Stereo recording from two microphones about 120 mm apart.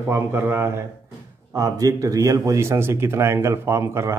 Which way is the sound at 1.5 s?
30° right (ahead or behind).